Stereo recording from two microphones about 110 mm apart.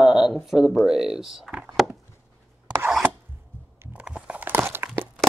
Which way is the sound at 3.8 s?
10° right (ahead or behind).